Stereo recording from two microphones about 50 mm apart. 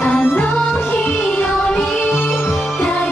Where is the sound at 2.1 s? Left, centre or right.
Left.